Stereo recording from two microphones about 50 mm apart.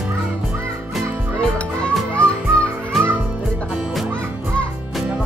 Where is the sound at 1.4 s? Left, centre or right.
Left.